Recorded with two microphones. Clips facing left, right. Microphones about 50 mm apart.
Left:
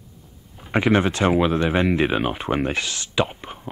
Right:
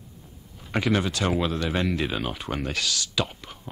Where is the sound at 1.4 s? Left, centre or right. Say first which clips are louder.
Left 6 dB; left.